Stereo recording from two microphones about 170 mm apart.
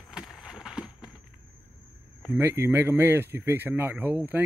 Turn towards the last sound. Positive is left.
turn(degrees=-10)  # may be behind; listen again after turning